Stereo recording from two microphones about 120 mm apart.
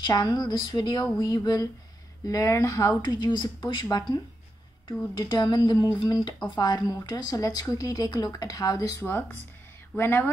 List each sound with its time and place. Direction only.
0.0 s speech: 35° left (ahead or behind)
9.0 s speech: 15° left (ahead or behind)